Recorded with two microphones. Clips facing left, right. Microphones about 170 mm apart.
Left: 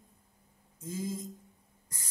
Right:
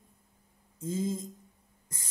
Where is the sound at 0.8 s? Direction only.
25° right (ahead or behind).